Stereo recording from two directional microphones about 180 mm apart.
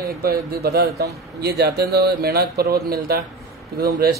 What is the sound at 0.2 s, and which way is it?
A man's voice, 55° right (ahead or behind).